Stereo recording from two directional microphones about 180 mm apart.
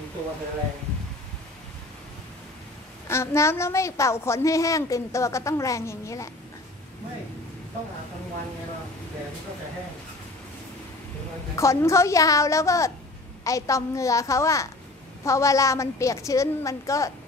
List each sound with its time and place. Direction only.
3.1 s a woman's voice: 15° left (ahead or behind)
11.5 s a woman's voice: 15° left (ahead or behind)